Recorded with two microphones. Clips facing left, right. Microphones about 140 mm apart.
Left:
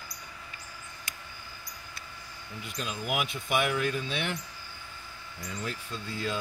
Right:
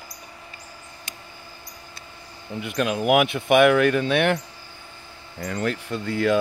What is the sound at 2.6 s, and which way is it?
Speech, 70° right (ahead or behind).